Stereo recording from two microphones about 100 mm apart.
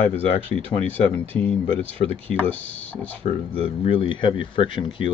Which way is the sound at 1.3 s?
15° left (ahead or behind).